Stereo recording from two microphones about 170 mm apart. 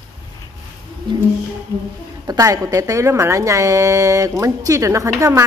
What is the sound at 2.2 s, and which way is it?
A woman's voice, 20° right (ahead or behind).